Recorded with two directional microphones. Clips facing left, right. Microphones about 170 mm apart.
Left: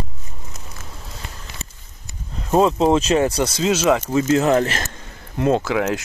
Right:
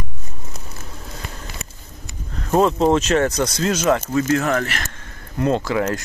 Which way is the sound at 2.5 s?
5° left (ahead or behind).